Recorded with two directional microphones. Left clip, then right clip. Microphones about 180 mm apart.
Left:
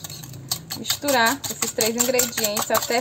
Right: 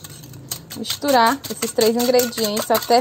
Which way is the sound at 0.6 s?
10° left (ahead or behind).